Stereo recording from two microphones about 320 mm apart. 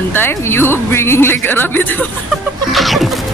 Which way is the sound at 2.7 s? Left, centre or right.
Centre.